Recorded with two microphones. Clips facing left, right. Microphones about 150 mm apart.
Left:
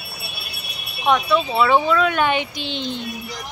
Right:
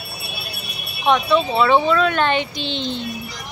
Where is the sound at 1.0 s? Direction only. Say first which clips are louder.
Right 1 dB; 5° left (ahead or behind).